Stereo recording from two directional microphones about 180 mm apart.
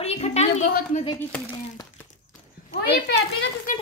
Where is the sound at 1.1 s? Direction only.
15° left (ahead or behind).